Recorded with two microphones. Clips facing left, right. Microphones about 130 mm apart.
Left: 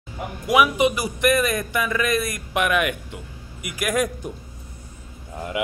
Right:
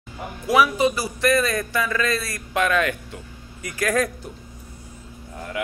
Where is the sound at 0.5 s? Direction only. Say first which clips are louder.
Even; 15° left (ahead or behind).